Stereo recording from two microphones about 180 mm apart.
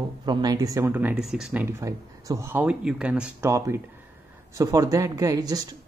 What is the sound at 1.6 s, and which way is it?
Speech, 15° right (ahead or behind).